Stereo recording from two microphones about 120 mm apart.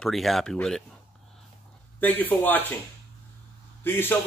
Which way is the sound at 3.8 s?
20° left (ahead or behind).